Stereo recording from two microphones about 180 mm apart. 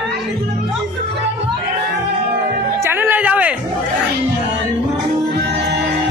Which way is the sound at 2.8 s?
10° right (ahead or behind).